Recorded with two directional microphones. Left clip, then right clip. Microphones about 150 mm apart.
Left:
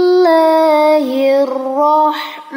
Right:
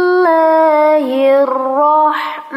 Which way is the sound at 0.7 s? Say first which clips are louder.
Even; 55° left (ahead or behind).